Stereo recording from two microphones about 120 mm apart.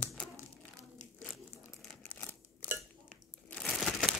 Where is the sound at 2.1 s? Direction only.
10° left (ahead or behind).